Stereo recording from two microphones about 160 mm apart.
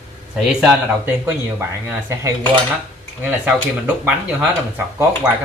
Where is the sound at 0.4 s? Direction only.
5° right (ahead or behind).